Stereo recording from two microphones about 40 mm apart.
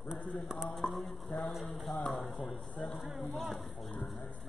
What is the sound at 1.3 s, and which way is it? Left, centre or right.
Speech, left.